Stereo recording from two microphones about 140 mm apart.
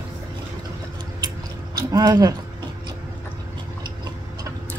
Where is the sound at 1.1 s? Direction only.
30° right (ahead or behind).